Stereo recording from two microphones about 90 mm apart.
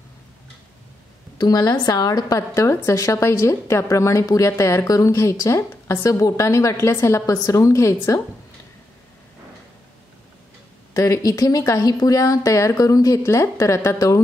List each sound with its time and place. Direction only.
1.4 s a woman's voice: 50° left (ahead or behind)
10.9 s a woman's voice: 40° left (ahead or behind)